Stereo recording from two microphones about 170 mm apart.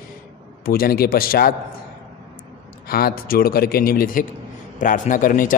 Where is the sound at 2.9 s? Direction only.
60° left (ahead or behind).